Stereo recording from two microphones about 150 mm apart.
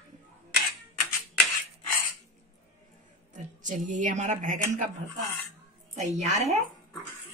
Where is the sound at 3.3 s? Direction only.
55° right (ahead or behind).